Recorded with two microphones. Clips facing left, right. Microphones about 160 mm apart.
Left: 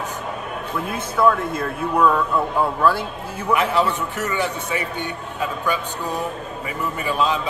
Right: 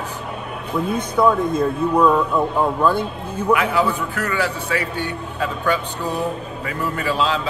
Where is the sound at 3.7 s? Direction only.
25° left (ahead or behind).